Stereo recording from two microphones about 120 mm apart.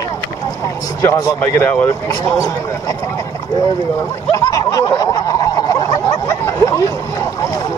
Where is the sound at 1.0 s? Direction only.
25° left (ahead or behind).